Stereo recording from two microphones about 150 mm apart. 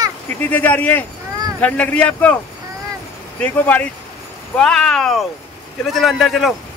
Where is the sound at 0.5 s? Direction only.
10° left (ahead or behind).